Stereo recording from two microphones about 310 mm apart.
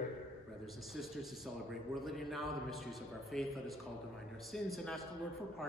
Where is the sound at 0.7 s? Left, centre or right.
Centre.